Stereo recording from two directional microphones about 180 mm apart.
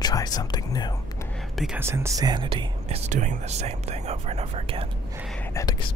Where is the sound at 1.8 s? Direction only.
15° right (ahead or behind).